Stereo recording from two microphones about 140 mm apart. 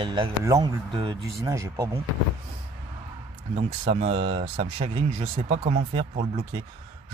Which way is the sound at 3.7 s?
45° right (ahead or behind).